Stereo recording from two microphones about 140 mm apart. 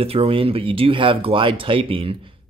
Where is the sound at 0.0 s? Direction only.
40° right (ahead or behind).